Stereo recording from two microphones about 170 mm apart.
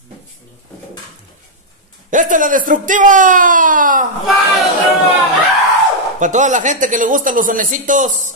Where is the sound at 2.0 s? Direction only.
50° right (ahead or behind).